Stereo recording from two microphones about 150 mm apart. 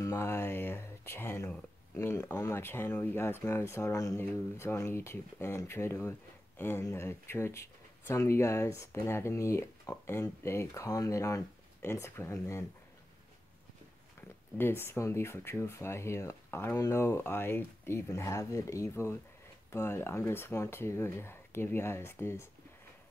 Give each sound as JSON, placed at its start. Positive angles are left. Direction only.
{"t": 0.0, "sound": "speech", "side_deg": 15}
{"t": 14.6, "sound": "speech", "side_deg": 15}